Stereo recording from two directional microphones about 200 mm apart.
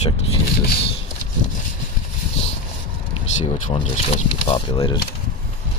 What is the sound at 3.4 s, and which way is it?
Speech, 35° left (ahead or behind).